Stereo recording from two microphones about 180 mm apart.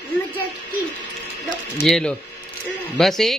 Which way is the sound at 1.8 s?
Centre (ahead or behind).